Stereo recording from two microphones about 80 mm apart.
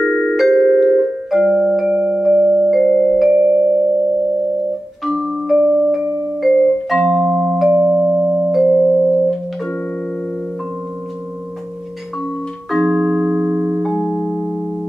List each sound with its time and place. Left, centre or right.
0.0 s music: centre
2.6 s music: centre
2.9 s music: centre
3.2 s music: centre
5.0 s music: centre
7.7 s music: right
8.5 s music: centre
8.7 s music: centre
12.7 s music: centre